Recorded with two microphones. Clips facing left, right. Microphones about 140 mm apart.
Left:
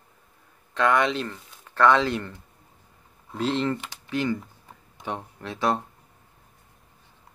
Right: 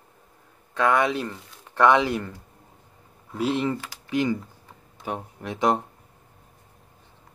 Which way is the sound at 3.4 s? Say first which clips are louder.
Right 1 dB; 10° right (ahead or behind).